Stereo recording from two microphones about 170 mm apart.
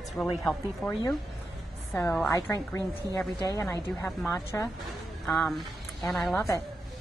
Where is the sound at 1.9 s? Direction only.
15° left (ahead or behind).